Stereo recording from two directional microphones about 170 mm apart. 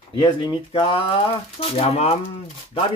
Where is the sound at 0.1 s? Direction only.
25° left (ahead or behind).